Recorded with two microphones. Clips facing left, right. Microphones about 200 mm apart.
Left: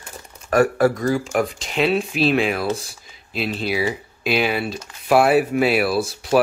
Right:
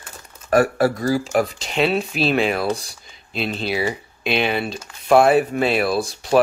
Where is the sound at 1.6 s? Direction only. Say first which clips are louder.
Even; centre (ahead or behind).